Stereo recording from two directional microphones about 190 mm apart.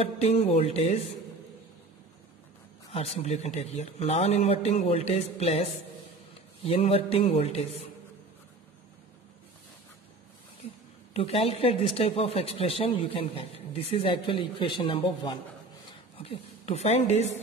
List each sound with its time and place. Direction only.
0.0 s a man's voice: 35° left (ahead or behind)
2.9 s a man's voice: 30° left (ahead or behind)
11.1 s speech: 30° left (ahead or behind)
15.8 s a sound: 25° left (ahead or behind)